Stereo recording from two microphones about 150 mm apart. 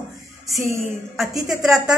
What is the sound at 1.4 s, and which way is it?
Speech, centre (ahead or behind).